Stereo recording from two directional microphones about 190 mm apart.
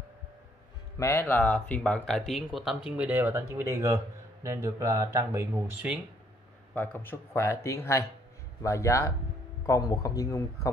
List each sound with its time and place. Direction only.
0.9 s speech: 15° left (ahead or behind); by 5.9 s 10° right (ahead or behind)
6.7 s speech: 10° left (ahead or behind)